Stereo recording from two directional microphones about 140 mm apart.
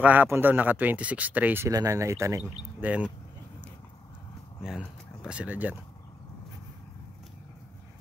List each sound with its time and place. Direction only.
0.0 s speech: 10° right (ahead or behind)
1.7 s speech: 25° right (ahead or behind)
4.6 s speech: 5° right (ahead or behind)